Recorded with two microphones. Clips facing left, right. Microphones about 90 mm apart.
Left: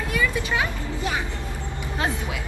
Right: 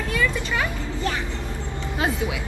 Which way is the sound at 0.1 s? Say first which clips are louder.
Even; 15° left (ahead or behind).